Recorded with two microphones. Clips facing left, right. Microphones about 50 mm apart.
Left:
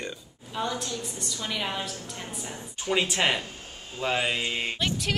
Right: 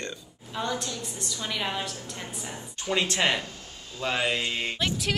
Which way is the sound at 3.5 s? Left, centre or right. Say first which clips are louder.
Left 1 dB; left.